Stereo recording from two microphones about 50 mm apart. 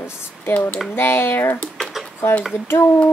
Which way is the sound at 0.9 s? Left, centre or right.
Left.